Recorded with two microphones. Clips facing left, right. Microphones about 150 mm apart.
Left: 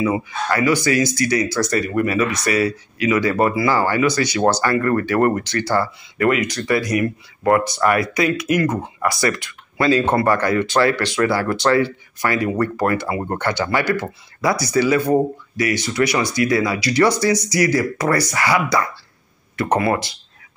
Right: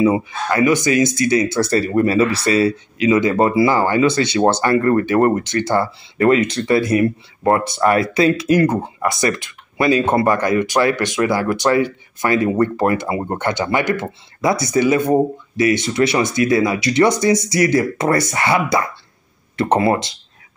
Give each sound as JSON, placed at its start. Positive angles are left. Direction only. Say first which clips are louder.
{"t": 0.0, "sound": "speech", "louder": "right 4 dB", "side_deg": -25}
{"t": 8.8, "sound": "speech", "louder": "right 1 dB", "side_deg": -20}